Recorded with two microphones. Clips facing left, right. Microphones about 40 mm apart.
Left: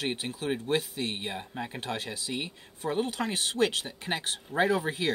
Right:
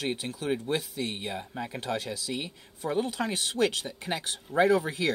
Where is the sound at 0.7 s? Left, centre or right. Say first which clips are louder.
Left 1 dB; left.